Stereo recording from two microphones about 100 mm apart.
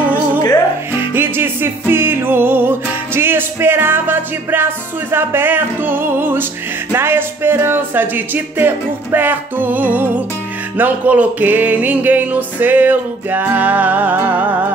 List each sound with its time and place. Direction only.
0.9 s music: 20° right (ahead or behind)
6.9 s speech: 20° right (ahead or behind)
10.8 s music: 15° right (ahead or behind)